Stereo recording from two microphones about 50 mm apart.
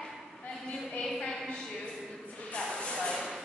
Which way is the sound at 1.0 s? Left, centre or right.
Centre.